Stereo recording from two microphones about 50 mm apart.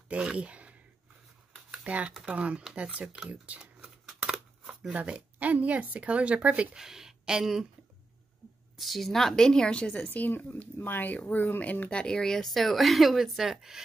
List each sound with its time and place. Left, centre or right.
0.1 s speech: right
1.7 s computer keyboard: right
2.2 s a woman's voice: right
5.4 s a woman's voice: right
6.7 s speech: centre
8.7 s a woman's voice: centre
10.0 s speech: left
12.0 s speech: centre